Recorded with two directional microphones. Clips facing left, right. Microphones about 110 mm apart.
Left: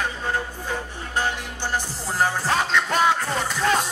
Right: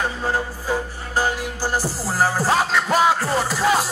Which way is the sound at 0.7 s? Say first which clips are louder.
Right 5 dB; 35° right (ahead or behind).